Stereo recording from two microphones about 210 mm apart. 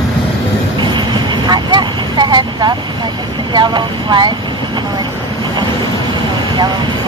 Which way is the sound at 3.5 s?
20° right (ahead or behind).